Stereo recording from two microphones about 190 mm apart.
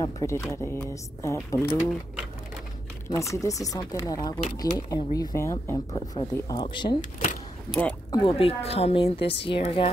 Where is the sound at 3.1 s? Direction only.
15° left (ahead or behind).